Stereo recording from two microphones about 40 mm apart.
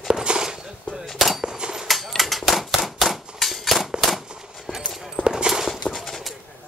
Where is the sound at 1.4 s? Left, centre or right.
Centre.